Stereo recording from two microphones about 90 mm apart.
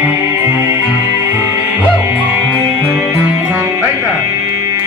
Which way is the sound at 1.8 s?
20° right (ahead or behind).